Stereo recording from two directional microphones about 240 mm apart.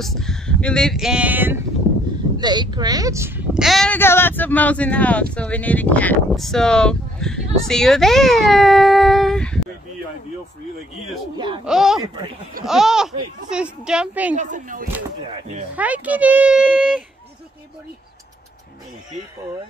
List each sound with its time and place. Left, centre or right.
0.0 s speech: centre
2.3 s speech: centre
11.3 s speech: centre
11.6 s speech: centre
14.3 s speech: right
15.7 s speech: centre